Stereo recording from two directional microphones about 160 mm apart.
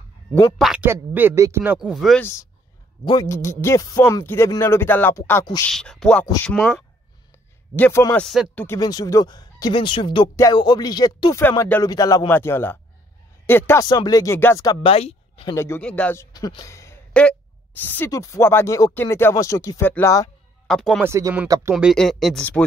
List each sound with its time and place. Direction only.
0.6 s speech: 5° right (ahead or behind)
0.8 s speech: 15° right (ahead or behind)
3.1 s speech: 20° left (ahead or behind)
5.7 s speech: 5° left (ahead or behind)
8.6 s speech: 25° left (ahead or behind)
11.4 s speech: 15° left (ahead or behind)
14.8 s speech: 35° left (ahead or behind)
15.5 s speech: 15° left (ahead or behind)
16.3 s speech: 25° left (ahead or behind)
17.1 s speech: 5° left (ahead or behind)
20.6 s speech: 5° left (ahead or behind)
21.0 s speech: 15° right (ahead or behind)
21.9 s speech: 5° left (ahead or behind)